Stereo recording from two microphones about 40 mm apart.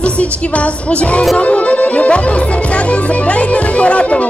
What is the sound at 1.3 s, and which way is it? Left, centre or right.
Music, left.